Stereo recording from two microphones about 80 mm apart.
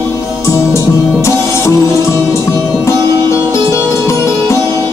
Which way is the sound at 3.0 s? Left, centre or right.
Right.